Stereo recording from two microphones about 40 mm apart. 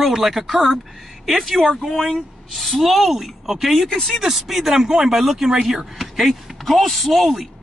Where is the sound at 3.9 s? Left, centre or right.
Centre.